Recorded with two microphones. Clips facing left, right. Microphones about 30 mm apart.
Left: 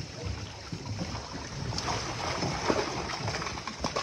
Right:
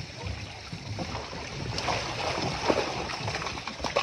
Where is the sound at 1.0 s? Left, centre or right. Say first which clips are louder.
Right 5 dB; right.